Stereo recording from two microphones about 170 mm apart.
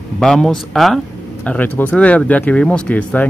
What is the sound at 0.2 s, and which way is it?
Speech, 5° left (ahead or behind).